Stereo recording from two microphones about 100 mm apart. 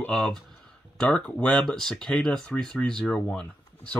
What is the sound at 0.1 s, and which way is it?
Speech, centre (ahead or behind).